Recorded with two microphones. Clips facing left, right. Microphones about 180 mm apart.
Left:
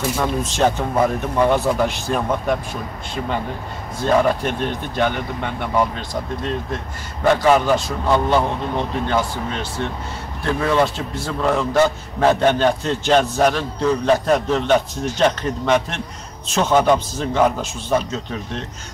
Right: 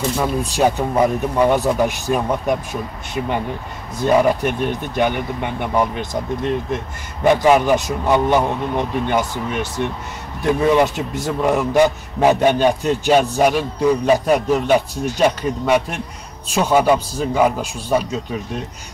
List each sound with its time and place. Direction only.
0.2 s a man's voice: 10° right (ahead or behind)
4.0 s a man's voice: 15° right (ahead or behind)